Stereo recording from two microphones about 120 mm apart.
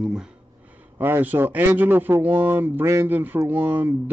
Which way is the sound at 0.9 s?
20° right (ahead or behind).